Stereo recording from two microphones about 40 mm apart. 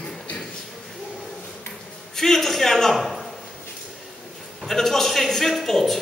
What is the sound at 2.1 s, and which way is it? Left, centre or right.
A man's voice, centre.